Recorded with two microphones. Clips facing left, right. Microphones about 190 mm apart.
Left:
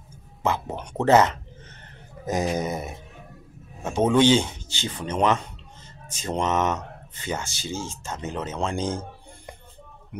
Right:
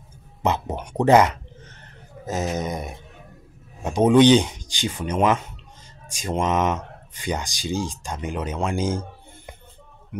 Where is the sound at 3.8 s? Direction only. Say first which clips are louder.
Right 4 dB; 15° right (ahead or behind).